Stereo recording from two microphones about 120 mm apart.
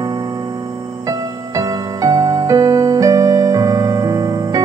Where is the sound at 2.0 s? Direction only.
30° right (ahead or behind).